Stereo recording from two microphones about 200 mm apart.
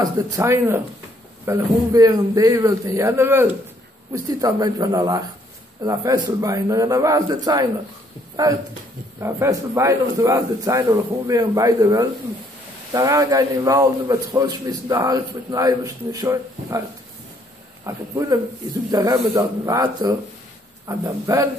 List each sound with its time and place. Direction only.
0.0 s a man's voice: 15° right (ahead or behind)
17.8 s a man's voice: 15° right (ahead or behind)